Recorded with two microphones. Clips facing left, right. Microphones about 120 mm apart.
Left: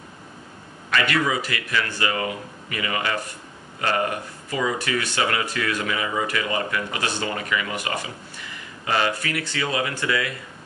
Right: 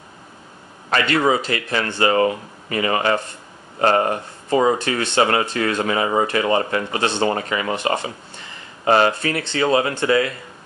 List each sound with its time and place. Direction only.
0.8 s speech: 35° right (ahead or behind)